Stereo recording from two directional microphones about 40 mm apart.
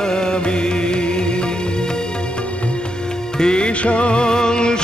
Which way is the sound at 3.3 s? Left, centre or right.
Left.